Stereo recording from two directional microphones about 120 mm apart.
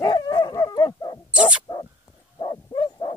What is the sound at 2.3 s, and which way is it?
Bow-wow, 35° left (ahead or behind).